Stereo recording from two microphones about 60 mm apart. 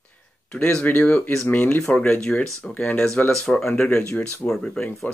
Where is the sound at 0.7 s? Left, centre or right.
Left.